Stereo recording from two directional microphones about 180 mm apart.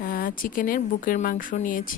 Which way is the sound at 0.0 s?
50° left (ahead or behind).